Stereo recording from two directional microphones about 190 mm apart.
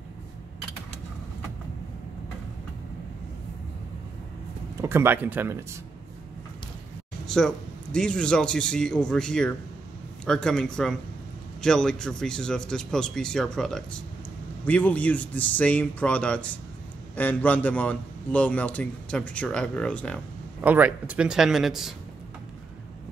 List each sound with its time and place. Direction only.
4.8 s speech: 10° right (ahead or behind)
7.2 s a man's voice: 5° left (ahead or behind)
20.6 s speech: 10° right (ahead or behind)